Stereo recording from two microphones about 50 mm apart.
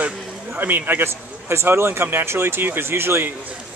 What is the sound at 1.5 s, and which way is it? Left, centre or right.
Speech, right.